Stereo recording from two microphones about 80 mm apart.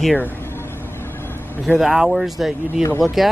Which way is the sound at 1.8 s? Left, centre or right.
Centre.